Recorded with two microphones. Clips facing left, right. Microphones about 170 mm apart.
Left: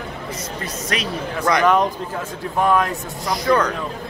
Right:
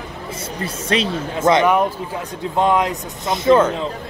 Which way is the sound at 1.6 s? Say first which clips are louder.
Even; 10° right (ahead or behind).